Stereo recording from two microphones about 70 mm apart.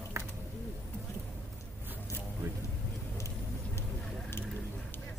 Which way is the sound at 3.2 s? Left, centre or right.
Left.